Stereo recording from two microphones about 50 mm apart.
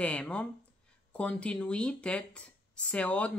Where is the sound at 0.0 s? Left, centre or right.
Left.